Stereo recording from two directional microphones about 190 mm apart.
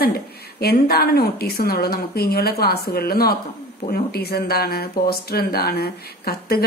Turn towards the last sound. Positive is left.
turn(degrees=55)  # may be behind; listen again after turning